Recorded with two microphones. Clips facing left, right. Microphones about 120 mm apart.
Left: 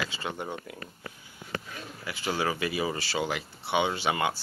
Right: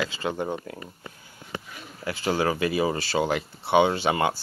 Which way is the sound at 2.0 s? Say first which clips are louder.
Right 5 dB; 35° right (ahead or behind).